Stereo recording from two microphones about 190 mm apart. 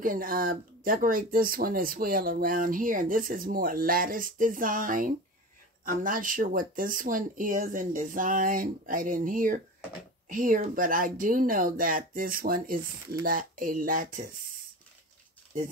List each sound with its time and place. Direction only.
0.0 s speech: 45° right (ahead or behind)